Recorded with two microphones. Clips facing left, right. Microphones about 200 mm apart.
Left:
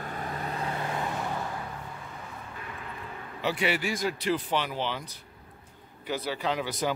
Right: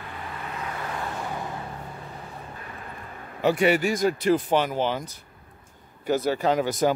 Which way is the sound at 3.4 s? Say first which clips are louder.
Right 8 dB; 50° right (ahead or behind).